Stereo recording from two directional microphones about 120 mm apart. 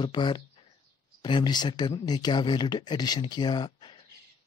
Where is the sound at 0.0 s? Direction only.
40° left (ahead or behind).